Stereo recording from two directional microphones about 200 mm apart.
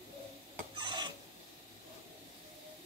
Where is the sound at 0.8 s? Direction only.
20° right (ahead or behind).